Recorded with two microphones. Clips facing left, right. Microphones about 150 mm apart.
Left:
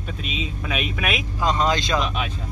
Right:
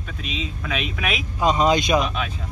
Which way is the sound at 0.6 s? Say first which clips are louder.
Left 1 dB; 5° left (ahead or behind).